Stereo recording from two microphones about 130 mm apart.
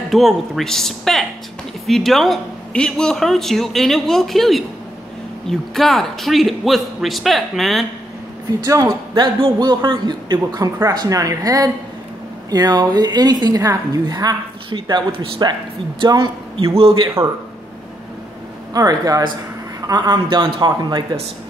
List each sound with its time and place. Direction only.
0.1 s a man's voice: centre (ahead or behind)
8.6 s a woman's voice: 30° right (ahead or behind)
16.7 s a man's voice: 45° right (ahead or behind)
18.7 s a woman's voice: 30° right (ahead or behind)